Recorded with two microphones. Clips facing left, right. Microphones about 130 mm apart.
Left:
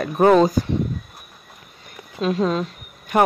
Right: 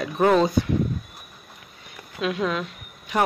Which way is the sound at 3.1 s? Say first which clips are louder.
Left 5 dB; 50° left (ahead or behind).